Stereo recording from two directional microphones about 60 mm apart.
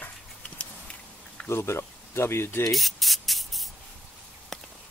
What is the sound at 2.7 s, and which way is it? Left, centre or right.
Spray, centre.